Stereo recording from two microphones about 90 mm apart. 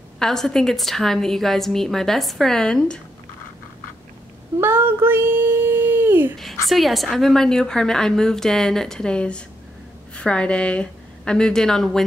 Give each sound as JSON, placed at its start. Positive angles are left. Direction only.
{"t": 0.2, "sound": "a woman's voice", "side_deg": 5}
{"t": 4.6, "sound": "a child's voice", "side_deg": -25}
{"t": 6.3, "sound": "a woman's voice", "side_deg": 0}